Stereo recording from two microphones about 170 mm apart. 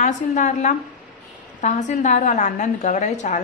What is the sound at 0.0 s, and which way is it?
A woman's voice, 45° left (ahead or behind).